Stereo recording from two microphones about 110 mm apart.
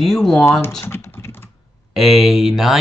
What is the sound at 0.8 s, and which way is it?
Speech, 20° left (ahead or behind).